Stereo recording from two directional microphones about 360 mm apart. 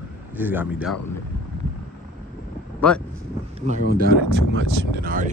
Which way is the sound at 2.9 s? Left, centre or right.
Centre.